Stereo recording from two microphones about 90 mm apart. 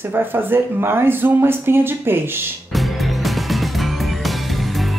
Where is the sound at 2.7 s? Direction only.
Centre (ahead or behind).